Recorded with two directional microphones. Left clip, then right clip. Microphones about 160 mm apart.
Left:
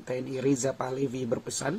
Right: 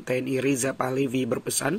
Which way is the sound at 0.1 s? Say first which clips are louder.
Right 4 dB; 15° right (ahead or behind).